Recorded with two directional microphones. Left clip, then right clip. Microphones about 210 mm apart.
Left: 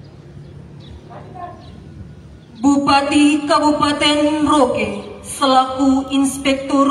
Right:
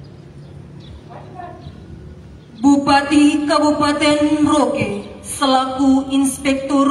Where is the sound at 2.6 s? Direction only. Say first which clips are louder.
Even; 20° right (ahead or behind).